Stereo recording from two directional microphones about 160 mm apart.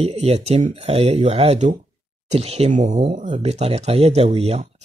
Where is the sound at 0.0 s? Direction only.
40° right (ahead or behind).